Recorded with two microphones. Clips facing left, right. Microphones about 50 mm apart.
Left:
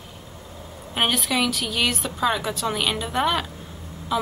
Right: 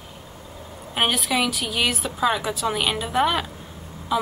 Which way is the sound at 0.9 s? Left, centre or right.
Centre.